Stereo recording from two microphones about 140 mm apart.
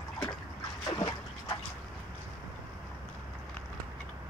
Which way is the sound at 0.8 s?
30° left (ahead or behind).